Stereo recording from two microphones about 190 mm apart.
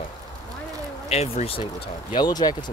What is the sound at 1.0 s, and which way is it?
Speech, 30° left (ahead or behind).